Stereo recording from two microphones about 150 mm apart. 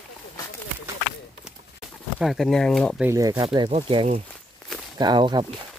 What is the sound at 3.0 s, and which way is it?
Speech, 15° right (ahead or behind).